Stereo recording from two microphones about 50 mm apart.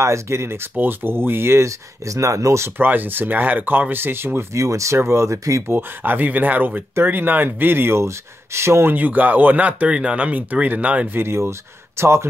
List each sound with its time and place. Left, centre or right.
0.0 s speech: right
1.6 s speech: right
2.8 s speech: right
4.6 s speech: right
4.9 s speech: right
5.7 s speech: right
8.0 s speech: right
8.8 s speech: right
11.1 s speech: right